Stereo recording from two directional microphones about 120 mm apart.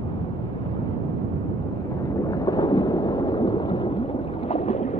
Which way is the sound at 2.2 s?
30° left (ahead or behind).